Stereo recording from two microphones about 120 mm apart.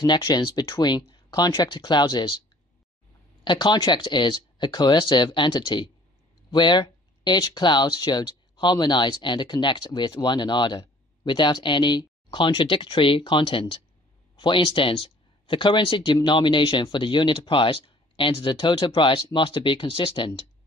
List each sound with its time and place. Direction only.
0.0 s speech: 35° left (ahead or behind)
3.4 s speech: 40° left (ahead or behind)